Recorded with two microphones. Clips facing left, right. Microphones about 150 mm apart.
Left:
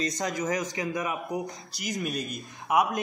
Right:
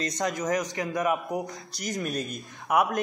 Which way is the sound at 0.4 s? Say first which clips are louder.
Right 1 dB; 45° right (ahead or behind).